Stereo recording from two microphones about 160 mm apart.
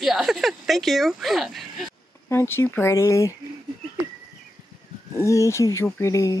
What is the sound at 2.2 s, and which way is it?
Speech, 15° left (ahead or behind).